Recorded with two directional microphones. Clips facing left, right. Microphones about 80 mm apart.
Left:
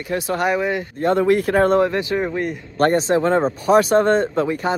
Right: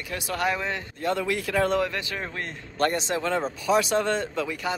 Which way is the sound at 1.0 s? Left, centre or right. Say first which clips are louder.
Left 10 dB; left.